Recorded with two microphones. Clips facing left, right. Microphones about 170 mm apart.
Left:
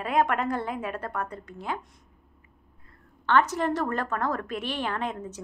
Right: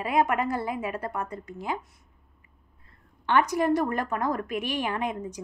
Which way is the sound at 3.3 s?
15° right (ahead or behind).